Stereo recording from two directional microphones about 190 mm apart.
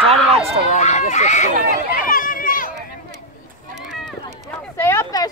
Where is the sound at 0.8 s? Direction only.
35° left (ahead or behind).